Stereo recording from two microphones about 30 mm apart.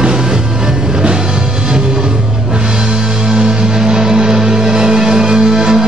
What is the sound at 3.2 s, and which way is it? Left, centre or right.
Music, right.